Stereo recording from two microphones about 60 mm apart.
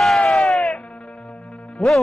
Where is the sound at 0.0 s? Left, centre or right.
Centre.